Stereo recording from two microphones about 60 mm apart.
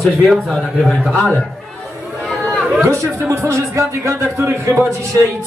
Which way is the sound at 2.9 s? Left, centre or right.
Right.